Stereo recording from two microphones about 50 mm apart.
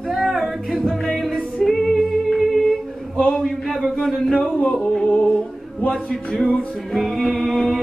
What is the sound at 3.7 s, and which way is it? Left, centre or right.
Speech, centre.